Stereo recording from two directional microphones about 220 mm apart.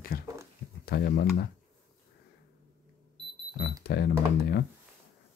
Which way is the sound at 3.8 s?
50° left (ahead or behind).